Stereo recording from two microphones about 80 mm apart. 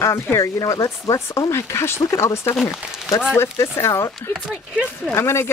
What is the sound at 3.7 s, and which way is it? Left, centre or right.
Speech, left.